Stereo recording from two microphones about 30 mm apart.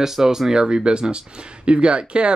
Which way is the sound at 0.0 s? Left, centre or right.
Centre.